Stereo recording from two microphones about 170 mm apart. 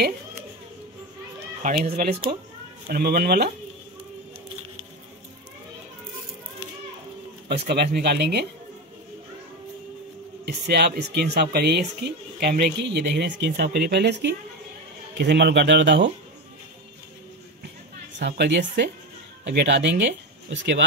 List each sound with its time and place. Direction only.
1.6 s speech: 55° right (ahead or behind)
7.5 s speech: 75° right (ahead or behind)
10.4 s speech: 75° right (ahead or behind); by 16.1 s 90° right
18.2 s speech: 90° right